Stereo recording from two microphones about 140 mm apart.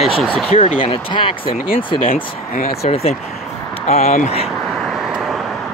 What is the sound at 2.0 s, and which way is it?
Speech, 75° left (ahead or behind).